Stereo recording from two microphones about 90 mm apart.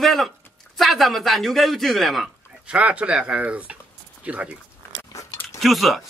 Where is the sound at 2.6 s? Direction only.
15° right (ahead or behind).